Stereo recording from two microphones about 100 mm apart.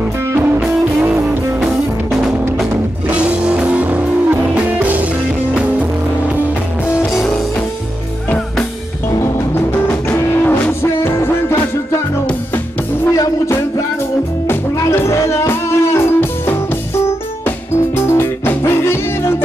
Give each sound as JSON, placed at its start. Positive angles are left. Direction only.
{"t": 1.0, "sound": "music", "side_deg": -15}
{"t": 3.1, "sound": "music", "side_deg": -15}
{"t": 10.1, "sound": "music", "side_deg": 25}
{"t": 14.5, "sound": "music", "side_deg": 25}
{"t": 17.9, "sound": "music", "side_deg": 25}